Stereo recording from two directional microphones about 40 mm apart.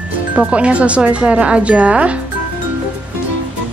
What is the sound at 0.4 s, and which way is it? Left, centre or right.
Speech, right.